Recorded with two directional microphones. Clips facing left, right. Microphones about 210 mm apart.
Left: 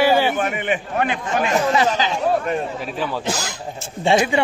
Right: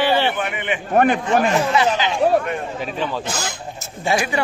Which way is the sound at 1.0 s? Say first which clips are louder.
Right 9 dB; 45° right (ahead or behind).